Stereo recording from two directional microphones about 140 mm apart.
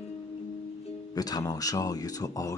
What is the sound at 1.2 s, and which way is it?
Speech, 25° left (ahead or behind).